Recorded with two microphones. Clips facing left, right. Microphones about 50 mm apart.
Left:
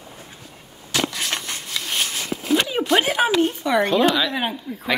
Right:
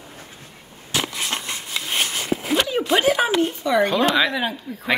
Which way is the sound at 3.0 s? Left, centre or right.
Left.